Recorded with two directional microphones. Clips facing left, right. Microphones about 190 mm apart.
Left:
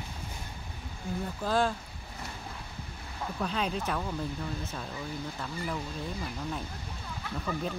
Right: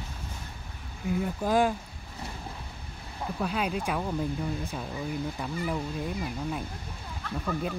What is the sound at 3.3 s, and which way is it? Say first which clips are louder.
Speech: right 2 dB; 10° right (ahead or behind).